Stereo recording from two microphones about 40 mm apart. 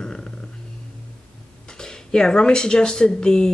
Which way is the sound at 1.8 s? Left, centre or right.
Centre.